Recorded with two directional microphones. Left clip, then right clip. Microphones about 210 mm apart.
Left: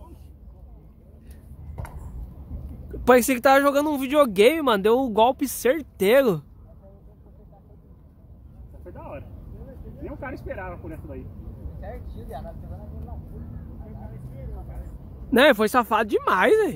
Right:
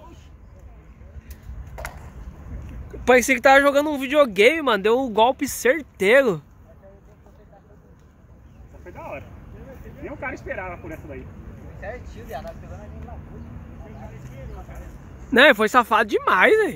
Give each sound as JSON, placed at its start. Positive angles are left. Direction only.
{"t": 1.8, "sound": "chop", "side_deg": -30}
{"t": 3.1, "sound": "speech", "side_deg": 20}
{"t": 8.9, "sound": "vehicle", "side_deg": 50}
{"t": 10.0, "sound": "speech", "side_deg": 50}
{"t": 11.8, "sound": "speech", "side_deg": 5}
{"t": 15.3, "sound": "speech", "side_deg": 10}